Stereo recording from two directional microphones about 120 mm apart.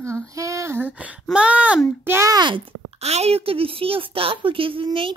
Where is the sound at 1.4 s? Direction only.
10° right (ahead or behind).